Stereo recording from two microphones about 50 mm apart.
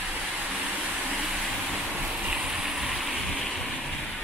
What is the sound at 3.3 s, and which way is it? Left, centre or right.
Vehicle, centre.